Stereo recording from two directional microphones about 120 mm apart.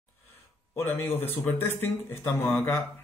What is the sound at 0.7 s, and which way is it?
Speech, 20° left (ahead or behind).